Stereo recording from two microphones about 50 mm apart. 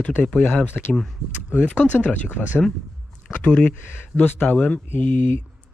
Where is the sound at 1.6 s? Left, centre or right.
Left.